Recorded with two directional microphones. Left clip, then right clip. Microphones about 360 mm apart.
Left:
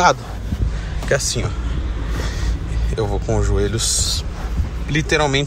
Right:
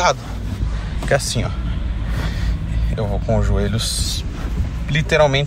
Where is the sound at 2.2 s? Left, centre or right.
Centre.